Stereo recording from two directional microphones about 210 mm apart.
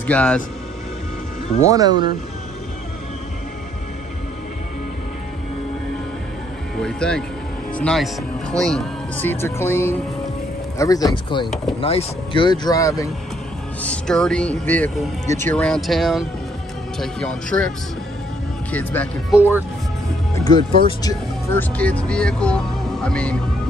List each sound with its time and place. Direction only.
0.0 s speech: 5° left (ahead or behind)
1.7 s speech: 20° right (ahead or behind)
6.8 s speech: 5° left (ahead or behind)
13.8 s speech: 5° left (ahead or behind)
19.3 s speech: 10° right (ahead or behind)
20.3 s speech: 20° left (ahead or behind)
21.7 s speech: 5° left (ahead or behind)